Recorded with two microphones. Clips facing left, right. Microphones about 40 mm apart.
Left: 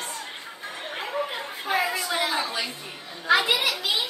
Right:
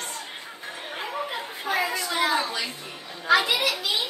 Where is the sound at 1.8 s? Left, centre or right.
Centre.